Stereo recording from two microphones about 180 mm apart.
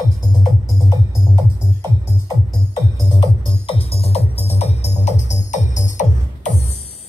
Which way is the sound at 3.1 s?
30° left (ahead or behind).